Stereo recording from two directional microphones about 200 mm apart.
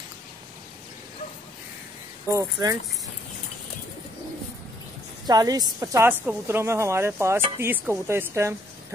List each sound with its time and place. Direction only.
2.3 s a woman's voice: 15° right (ahead or behind)
5.2 s a woman's voice: 20° right (ahead or behind)